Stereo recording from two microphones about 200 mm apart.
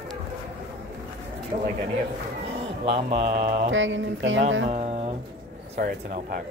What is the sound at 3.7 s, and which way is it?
Speech, 70° right (ahead or behind).